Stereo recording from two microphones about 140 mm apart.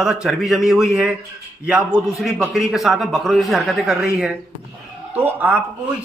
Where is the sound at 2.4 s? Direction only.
Centre (ahead or behind).